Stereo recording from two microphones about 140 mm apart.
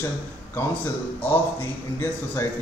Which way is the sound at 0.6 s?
15° left (ahead or behind).